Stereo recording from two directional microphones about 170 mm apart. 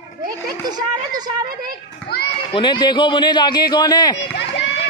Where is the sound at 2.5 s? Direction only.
25° left (ahead or behind).